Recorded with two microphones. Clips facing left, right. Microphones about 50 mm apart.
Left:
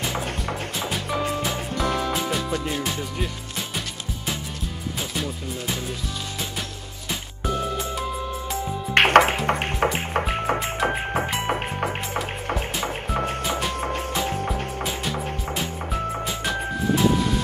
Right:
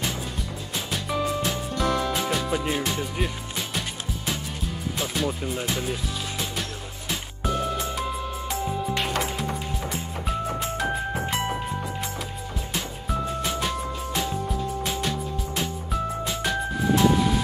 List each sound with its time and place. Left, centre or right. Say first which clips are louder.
1.4 s music: even; centre
2.5 s music: right 1 dB; centre
5.1 s speech: right 3 dB; centre
8.9 s music: left 11 dB; left
15.5 s music: even; centre